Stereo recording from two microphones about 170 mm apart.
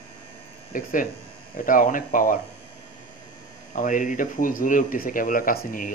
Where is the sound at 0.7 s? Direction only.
55° left (ahead or behind).